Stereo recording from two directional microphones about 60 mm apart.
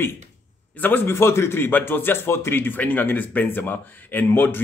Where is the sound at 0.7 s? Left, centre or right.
Left.